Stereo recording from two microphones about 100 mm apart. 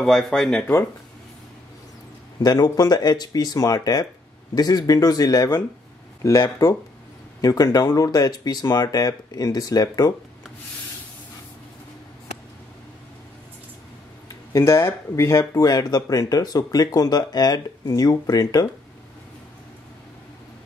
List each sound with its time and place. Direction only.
0.0 s speech: 5° left (ahead or behind)
0.6 s speech: 20° left (ahead or behind)
2.4 s speech: 40° left (ahead or behind)
7.4 s speech: 40° left (ahead or behind)
14.5 s speech: 25° left (ahead or behind)